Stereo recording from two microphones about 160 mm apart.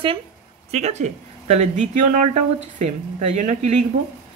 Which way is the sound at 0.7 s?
45° right (ahead or behind).